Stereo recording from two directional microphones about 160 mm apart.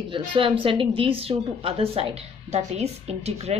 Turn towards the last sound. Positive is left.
turn(degrees=-40)  # may be behind; listen again after turning